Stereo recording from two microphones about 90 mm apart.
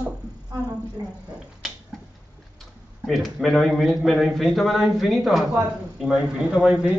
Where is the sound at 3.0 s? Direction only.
Centre (ahead or behind).